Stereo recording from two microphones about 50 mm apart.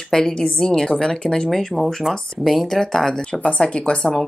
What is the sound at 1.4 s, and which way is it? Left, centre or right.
Speech, centre.